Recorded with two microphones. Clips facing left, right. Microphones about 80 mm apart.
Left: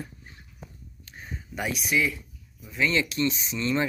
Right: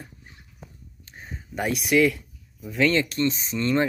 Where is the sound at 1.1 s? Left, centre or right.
Right.